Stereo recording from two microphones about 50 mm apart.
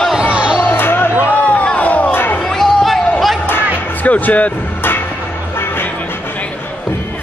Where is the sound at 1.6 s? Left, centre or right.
Left.